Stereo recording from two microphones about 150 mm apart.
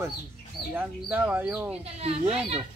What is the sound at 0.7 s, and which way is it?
Speech, 10° right (ahead or behind).